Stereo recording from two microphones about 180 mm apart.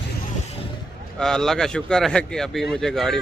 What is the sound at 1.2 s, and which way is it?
Speech, 5° left (ahead or behind).